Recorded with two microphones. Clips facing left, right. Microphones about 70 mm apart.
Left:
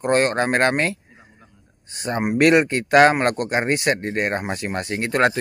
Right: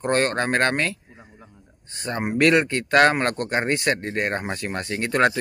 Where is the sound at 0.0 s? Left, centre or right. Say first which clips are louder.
Left 3 dB; centre.